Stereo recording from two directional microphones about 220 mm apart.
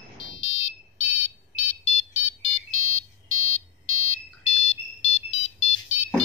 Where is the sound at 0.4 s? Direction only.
30° left (ahead or behind).